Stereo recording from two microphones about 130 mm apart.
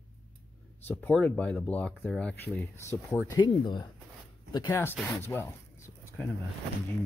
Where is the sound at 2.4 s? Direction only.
20° left (ahead or behind).